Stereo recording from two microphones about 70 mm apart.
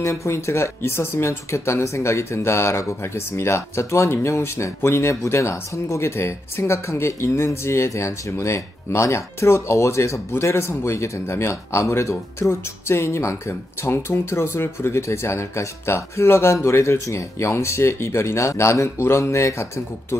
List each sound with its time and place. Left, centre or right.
0.0 s speech: left